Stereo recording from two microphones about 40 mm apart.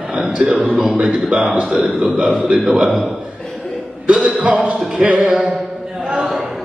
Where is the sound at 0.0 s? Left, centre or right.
Right.